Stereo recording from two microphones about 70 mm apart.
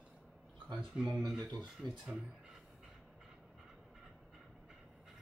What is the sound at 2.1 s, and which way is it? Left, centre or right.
Speech, centre.